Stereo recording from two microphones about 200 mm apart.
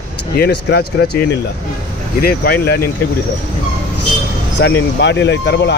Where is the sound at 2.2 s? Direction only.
50° left (ahead or behind).